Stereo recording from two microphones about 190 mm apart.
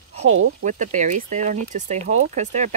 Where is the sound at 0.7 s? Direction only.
40° right (ahead or behind).